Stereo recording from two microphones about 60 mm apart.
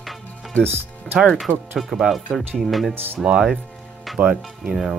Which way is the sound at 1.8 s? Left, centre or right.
Centre.